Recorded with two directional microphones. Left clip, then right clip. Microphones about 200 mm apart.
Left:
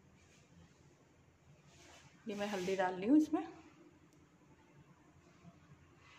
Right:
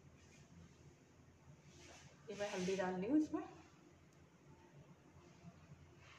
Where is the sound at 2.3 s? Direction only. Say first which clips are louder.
Left 4 dB; 50° left (ahead or behind).